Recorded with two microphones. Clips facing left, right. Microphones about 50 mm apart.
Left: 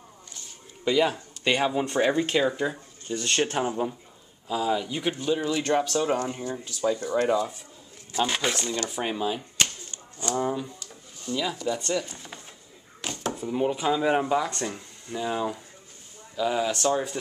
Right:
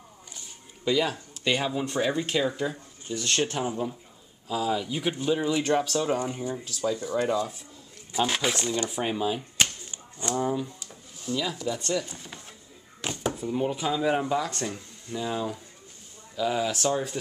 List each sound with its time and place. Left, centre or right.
0.8 s speech: centre
5.1 s speech: centre
5.7 s speech: centre
7.0 s speech: centre
7.2 s speech: centre
13.0 s a sound: centre
13.5 s speech: centre